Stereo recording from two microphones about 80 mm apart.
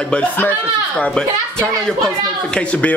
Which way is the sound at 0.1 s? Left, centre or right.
Centre.